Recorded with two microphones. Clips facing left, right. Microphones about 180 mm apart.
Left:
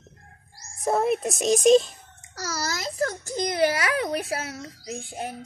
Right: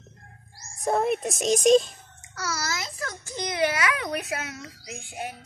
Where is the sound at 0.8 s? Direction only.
Centre (ahead or behind).